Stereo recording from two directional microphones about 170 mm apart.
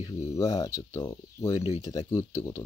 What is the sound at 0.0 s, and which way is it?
Speech, 20° left (ahead or behind).